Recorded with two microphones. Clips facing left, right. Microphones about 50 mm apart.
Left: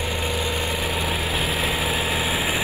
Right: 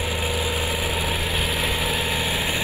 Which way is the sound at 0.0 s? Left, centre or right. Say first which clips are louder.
Even; centre.